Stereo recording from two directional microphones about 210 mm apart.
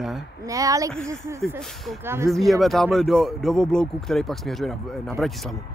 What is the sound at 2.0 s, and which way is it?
Speech, 10° right (ahead or behind).